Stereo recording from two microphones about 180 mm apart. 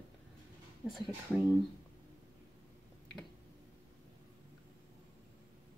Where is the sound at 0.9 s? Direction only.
Centre (ahead or behind).